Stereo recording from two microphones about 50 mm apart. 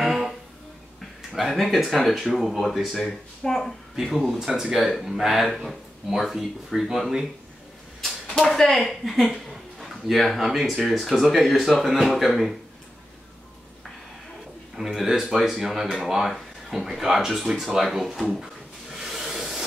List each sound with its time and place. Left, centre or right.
0.0 s music: centre
1.3 s speech: centre
3.0 s speech: centre
8.0 s speech: centre
14.8 s speech: centre
18.3 s a sound: centre